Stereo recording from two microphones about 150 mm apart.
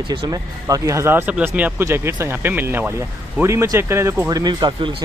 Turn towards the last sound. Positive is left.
turn(degrees=-30)  # may be behind; listen again after turning